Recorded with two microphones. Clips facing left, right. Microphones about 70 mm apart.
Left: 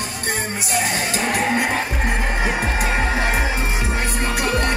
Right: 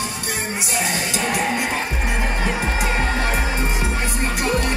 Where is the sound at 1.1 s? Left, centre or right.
Left.